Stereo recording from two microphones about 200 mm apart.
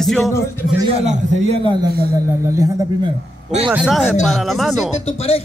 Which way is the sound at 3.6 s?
5° right (ahead or behind).